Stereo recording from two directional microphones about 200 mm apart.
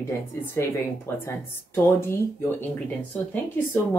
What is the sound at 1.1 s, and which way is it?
Speech, 10° left (ahead or behind).